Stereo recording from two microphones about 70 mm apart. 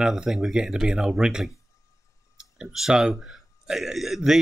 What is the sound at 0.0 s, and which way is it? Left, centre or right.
Speech, centre.